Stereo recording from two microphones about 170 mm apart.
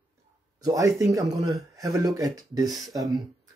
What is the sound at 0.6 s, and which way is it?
Speech, 20° right (ahead or behind).